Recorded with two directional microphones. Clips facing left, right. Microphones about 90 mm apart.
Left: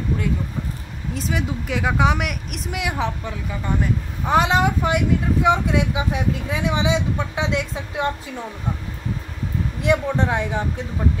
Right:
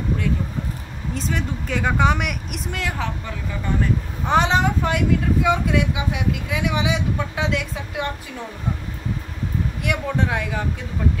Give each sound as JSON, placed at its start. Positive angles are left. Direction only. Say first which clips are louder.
{"t": 1.1, "sound": "speech", "louder": "left 1 dB", "side_deg": 5}
{"t": 2.8, "sound": "speech", "louder": "left 4 dB", "side_deg": 15}
{"t": 4.3, "sound": "speech", "louder": "left 1 dB", "side_deg": 5}
{"t": 9.8, "sound": "speech", "louder": "left 5 dB", "side_deg": 30}